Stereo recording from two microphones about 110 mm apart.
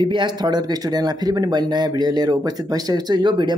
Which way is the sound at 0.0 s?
45° right (ahead or behind).